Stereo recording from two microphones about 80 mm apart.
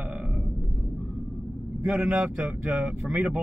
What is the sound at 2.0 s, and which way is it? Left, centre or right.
Speech, centre.